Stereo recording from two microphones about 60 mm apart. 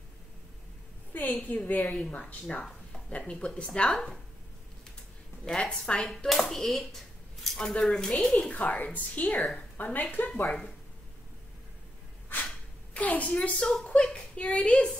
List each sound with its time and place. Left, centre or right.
1.1 s a woman's voice: left
5.4 s speech: centre
6.0 s speech: centre
8.5 s a woman's voice: left
9.3 s speech: centre
9.6 s a woman's voice: left
10.4 s speech: centre
12.9 s a woman's voice: left